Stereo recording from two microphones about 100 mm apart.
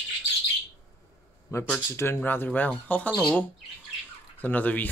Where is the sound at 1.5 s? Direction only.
25° left (ahead or behind).